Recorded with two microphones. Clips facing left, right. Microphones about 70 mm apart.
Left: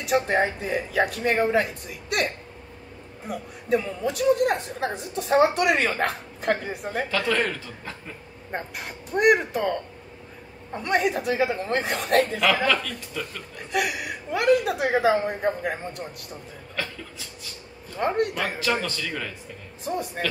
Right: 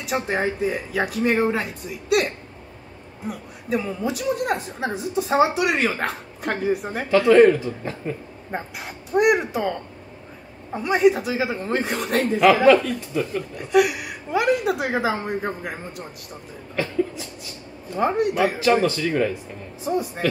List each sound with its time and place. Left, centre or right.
0.0 s a woman's voice: centre
7.3 s speech: right
8.5 s a woman's voice: centre
12.6 s speech: centre
13.6 s a woman's voice: centre
17.9 s a woman's voice: centre
18.6 s speech: right
19.8 s a woman's voice: centre